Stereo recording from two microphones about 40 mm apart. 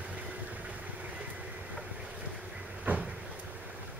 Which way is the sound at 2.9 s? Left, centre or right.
Right.